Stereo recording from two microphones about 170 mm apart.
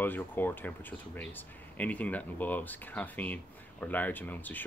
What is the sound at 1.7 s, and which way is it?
Speech, 10° left (ahead or behind).